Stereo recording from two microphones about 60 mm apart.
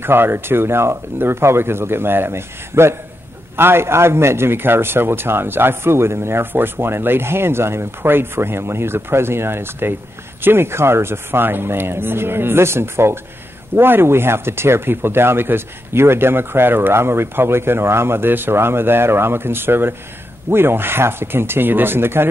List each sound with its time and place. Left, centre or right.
0.0 s a man's voice: right